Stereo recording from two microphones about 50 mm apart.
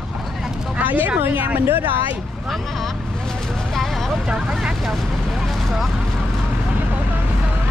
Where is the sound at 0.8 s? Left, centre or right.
Right.